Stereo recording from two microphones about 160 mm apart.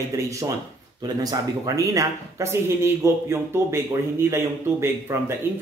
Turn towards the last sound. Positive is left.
turn(degrees=-15)  # may be behind; listen again after turning